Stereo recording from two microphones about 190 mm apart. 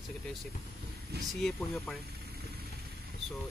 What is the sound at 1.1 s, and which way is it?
Speech, 55° right (ahead or behind).